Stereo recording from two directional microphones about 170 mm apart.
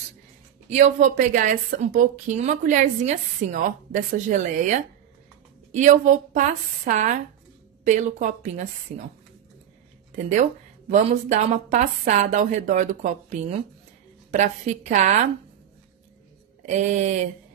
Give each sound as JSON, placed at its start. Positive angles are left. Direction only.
{"t": 0.7, "sound": "speech", "side_deg": -40}
{"t": 10.9, "sound": "speech", "side_deg": -45}
{"t": 16.6, "sound": "speech", "side_deg": -45}